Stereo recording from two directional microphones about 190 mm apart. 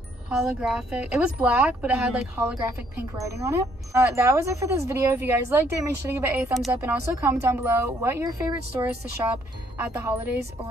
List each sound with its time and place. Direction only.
0.3 s speech: centre (ahead or behind)
6.4 s speech: centre (ahead or behind)